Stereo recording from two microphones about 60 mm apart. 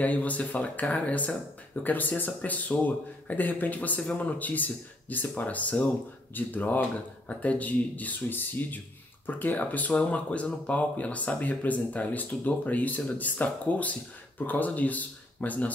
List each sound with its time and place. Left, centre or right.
0.0 s speech: left